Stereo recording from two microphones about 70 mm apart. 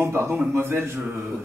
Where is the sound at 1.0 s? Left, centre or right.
Right.